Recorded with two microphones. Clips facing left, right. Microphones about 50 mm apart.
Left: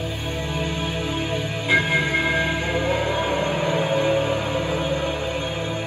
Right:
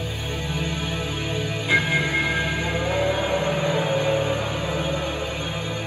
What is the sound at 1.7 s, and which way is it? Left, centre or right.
Music, left.